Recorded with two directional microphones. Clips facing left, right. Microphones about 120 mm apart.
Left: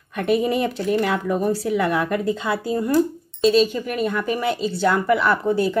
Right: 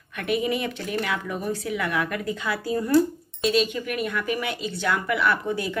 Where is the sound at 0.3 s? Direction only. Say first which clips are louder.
Left 5 dB; 35° left (ahead or behind).